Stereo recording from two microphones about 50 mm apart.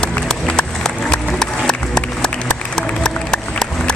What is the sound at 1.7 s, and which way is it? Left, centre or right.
Music, centre.